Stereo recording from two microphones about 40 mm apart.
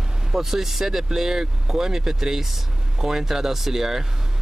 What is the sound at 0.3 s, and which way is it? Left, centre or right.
Speech, centre.